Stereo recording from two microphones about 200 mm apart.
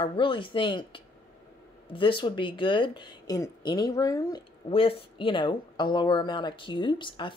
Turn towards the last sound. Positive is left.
turn(degrees=25)  # may be behind; listen again after turning